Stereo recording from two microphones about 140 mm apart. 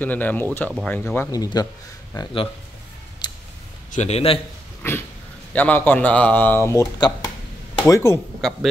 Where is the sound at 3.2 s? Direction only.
30° left (ahead or behind).